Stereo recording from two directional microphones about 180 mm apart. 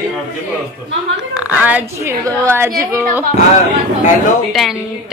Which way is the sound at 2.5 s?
15° right (ahead or behind).